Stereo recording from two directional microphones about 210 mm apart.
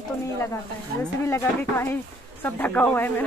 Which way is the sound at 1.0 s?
10° left (ahead or behind).